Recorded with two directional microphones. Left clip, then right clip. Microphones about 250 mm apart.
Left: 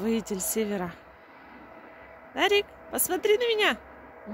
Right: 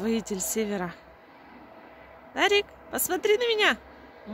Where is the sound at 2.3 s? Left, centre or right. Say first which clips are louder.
Right 1 dB; centre.